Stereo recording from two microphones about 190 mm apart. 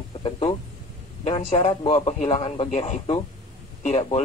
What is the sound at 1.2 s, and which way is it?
A man's voice, 35° left (ahead or behind).